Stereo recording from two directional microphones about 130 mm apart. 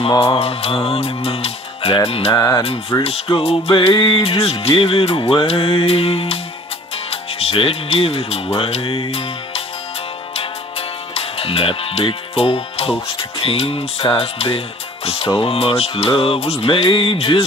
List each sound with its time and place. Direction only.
0.2 s music: 50° left (ahead or behind)
2.3 s music: 25° left (ahead or behind)
3.0 s music: 45° left (ahead or behind)
7.1 s speech: 50° left (ahead or behind)
8.5 s music: 50° left (ahead or behind)
11.1 s speech: 50° left (ahead or behind)
13.4 s music: 45° left (ahead or behind)